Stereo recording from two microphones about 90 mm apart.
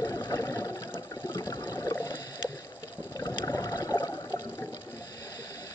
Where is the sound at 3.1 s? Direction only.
40° left (ahead or behind).